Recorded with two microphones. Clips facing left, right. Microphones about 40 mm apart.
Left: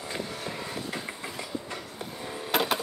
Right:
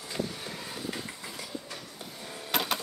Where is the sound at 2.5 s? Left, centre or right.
Centre.